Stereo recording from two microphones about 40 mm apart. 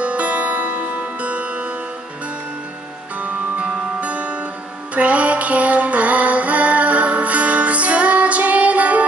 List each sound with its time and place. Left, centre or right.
0.0 s music: right
1.2 s music: right
3.2 s music: right